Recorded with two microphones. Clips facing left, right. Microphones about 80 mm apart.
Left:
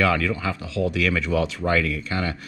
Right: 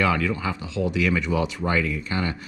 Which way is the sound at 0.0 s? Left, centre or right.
Centre.